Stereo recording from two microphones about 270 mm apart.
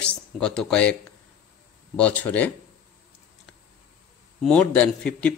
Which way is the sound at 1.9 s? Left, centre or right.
Centre.